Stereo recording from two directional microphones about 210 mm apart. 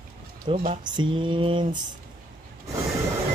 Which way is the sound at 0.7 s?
20° right (ahead or behind).